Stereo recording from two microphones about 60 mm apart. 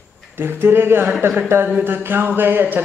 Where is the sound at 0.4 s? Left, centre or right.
Right.